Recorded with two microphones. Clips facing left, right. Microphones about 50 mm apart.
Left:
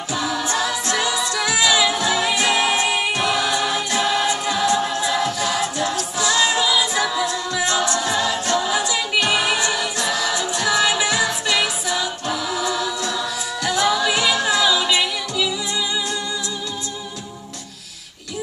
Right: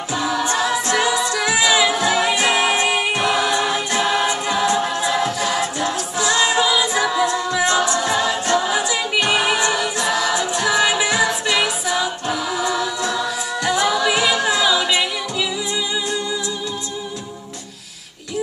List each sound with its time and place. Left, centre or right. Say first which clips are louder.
0.1 s a capella: right 2 dB; centre
10.1 s music: right 3 dB; centre